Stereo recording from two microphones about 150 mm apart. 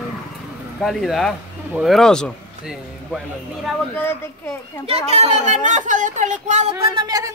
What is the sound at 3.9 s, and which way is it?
Speech, 15° left (ahead or behind).